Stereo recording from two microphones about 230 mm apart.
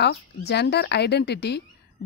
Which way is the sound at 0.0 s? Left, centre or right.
Left.